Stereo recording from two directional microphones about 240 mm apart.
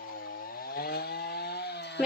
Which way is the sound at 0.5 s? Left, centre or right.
Left.